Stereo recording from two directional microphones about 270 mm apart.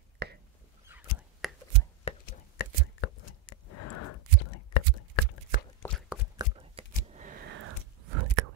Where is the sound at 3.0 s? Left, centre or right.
Left.